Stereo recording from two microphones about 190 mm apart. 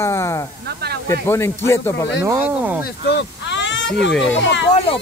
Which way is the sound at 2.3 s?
10° right (ahead or behind).